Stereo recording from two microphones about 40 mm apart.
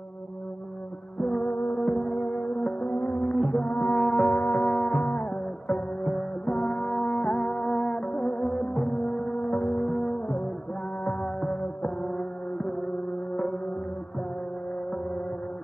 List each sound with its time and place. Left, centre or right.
1.2 s music: centre
2.8 s music: left
3.1 s music: centre
3.6 s music: left
3.9 s music: centre
4.4 s music: left
4.6 s music: centre
6.1 s music: centre
8.5 s music: centre
11.1 s music: centre